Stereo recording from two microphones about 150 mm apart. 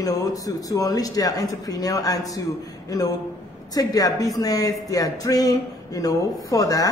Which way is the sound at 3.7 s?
25° left (ahead or behind).